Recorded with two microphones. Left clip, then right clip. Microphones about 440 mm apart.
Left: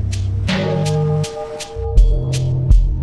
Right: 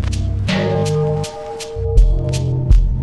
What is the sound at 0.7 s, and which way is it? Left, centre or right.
Music, right.